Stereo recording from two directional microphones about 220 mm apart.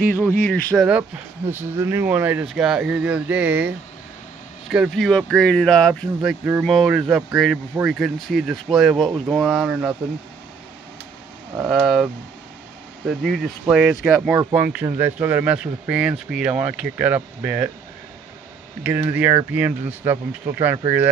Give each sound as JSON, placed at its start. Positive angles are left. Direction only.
{"t": 0.1, "sound": "speech", "side_deg": 10}
{"t": 1.5, "sound": "speech", "side_deg": -10}
{"t": 11.8, "sound": "speech", "side_deg": 0}
{"t": 18.8, "sound": "speech", "side_deg": -10}